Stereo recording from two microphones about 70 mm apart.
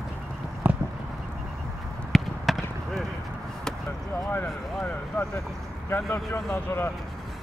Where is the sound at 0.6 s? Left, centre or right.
Right.